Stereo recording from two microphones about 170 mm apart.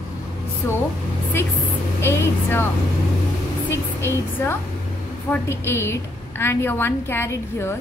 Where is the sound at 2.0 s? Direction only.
15° left (ahead or behind).